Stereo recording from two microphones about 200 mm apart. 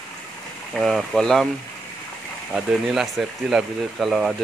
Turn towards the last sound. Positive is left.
turn(degrees=0)  # may be behind; listen again after turning